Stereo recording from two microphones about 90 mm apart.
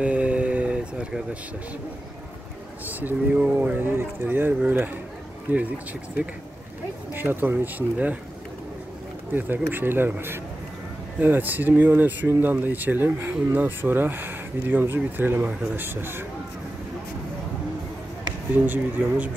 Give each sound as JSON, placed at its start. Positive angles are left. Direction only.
{"t": 0.0, "sound": "a sound", "side_deg": -15}
{"t": 2.9, "sound": "speech", "side_deg": -20}
{"t": 7.2, "sound": "speech", "side_deg": -20}
{"t": 9.3, "sound": "speech", "side_deg": -20}
{"t": 18.7, "sound": "speech", "side_deg": -20}